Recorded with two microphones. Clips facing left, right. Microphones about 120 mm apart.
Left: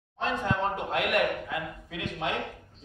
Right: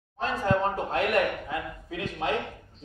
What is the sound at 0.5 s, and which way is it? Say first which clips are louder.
Speech: right 7 dB; 35° right (ahead or behind).